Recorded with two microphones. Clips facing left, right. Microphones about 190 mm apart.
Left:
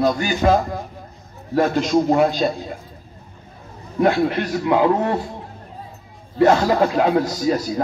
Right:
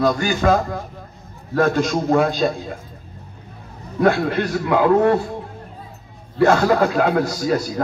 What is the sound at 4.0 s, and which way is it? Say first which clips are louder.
A man's voice: even; 20° left (ahead or behind).